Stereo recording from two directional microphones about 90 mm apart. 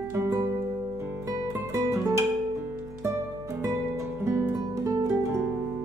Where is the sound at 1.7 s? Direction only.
35° right (ahead or behind).